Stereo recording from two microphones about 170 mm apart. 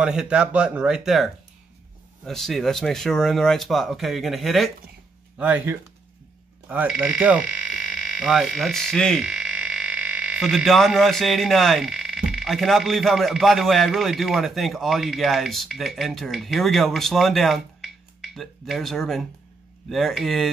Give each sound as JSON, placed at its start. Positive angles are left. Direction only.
{"t": 0.0, "sound": "speech", "side_deg": -5}